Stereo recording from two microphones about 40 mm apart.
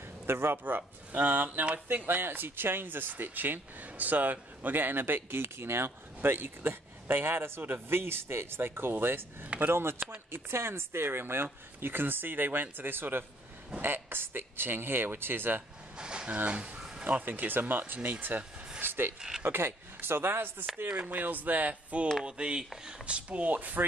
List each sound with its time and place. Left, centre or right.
0.3 s speech: right
0.7 s speech: right
9.6 s speech: right
10.3 s speech: right
11.4 s speech: right
16.0 s a sound: right
16.4 s speech: right
17.0 s speech: right
18.8 s a sound: right
19.4 s speech: right
21.1 s speech: right
22.2 s speech: right